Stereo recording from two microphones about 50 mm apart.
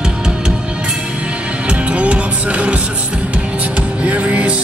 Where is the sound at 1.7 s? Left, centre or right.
Right.